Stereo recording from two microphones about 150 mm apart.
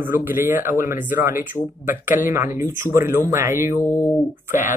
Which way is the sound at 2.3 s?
15° right (ahead or behind).